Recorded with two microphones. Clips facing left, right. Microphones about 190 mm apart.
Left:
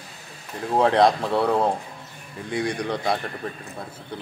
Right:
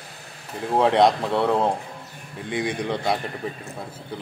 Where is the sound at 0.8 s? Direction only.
Centre (ahead or behind).